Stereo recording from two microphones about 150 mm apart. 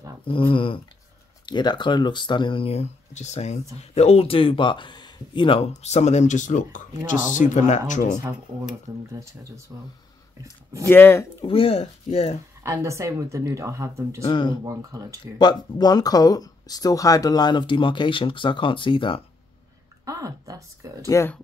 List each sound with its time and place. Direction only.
0.2 s speech: 35° left (ahead or behind)
5.7 s speech: 45° left (ahead or behind)
8.9 s speech: 20° right (ahead or behind)
10.9 s speech: 15° left (ahead or behind)
11.4 s speech: 40° left (ahead or behind)
12.6 s speech: 20° right (ahead or behind)
14.2 s speech: 30° left (ahead or behind)
14.6 s speech: 20° right (ahead or behind)
15.3 s speech: 30° left (ahead or behind)
20.1 s speech: 20° right (ahead or behind)
21.1 s speech: 20° left (ahead or behind)